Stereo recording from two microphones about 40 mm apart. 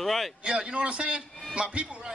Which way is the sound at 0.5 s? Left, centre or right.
Right.